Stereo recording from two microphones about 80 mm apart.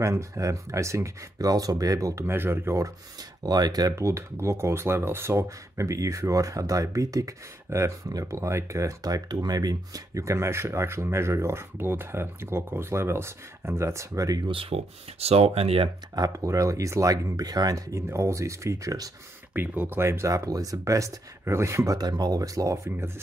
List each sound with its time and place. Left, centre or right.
0.0 s speech: right
2.2 s speech: right
3.4 s speech: right
3.9 s speech: right
16.2 s speech: right
19.5 s speech: right
21.9 s speech: right
22.8 s speech: right